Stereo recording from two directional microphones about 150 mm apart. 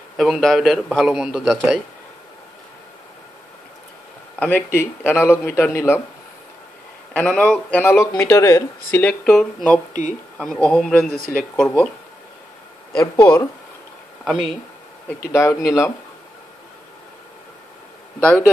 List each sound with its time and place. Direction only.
0.2 s a man's voice: centre (ahead or behind)
4.4 s speech: 10° left (ahead or behind)
7.2 s speech: 5° left (ahead or behind)
12.9 s speech: 25° left (ahead or behind)
14.2 s a man's voice: centre (ahead or behind)
15.3 s speech: 20° left (ahead or behind)